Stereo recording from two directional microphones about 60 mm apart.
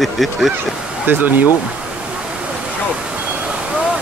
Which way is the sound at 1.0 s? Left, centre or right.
Right.